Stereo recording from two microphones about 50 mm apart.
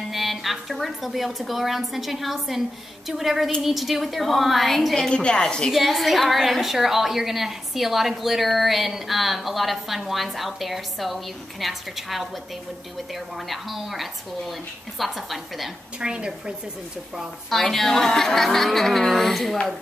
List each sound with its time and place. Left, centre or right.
0.1 s a woman's voice: centre
5.1 s a woman's voice: centre
5.7 s a woman's voice: centre
16.0 s a woman's voice: centre
17.5 s a woman's voice: centre